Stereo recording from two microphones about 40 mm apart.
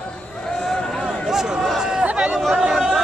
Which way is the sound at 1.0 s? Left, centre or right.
Centre.